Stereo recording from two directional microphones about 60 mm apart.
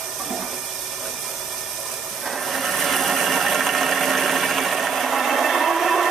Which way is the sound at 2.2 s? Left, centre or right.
Centre.